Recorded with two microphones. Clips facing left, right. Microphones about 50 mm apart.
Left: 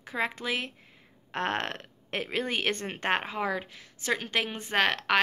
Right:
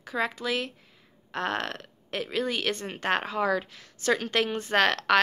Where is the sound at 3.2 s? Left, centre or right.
Centre.